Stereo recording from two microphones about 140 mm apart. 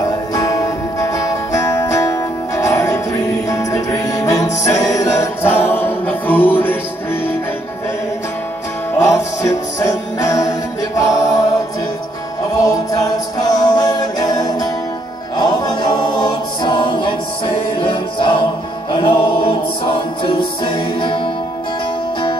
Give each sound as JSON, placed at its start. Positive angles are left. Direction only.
{"t": 0.3, "sound": "music", "side_deg": 25}
{"t": 9.0, "sound": "music", "side_deg": 25}
{"t": 11.0, "sound": "a capella", "side_deg": 25}
{"t": 12.6, "sound": "music", "side_deg": 25}
{"t": 15.3, "sound": "choir", "side_deg": 30}
{"t": 17.7, "sound": "music", "side_deg": 35}